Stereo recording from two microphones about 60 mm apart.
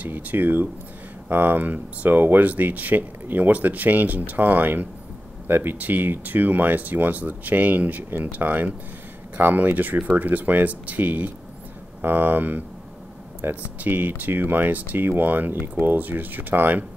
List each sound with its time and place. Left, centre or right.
0.0 s speech: right